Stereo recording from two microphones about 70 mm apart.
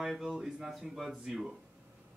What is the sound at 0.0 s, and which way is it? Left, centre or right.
Speech, centre.